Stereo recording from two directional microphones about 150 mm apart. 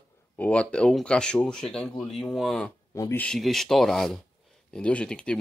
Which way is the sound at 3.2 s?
5° left (ahead or behind).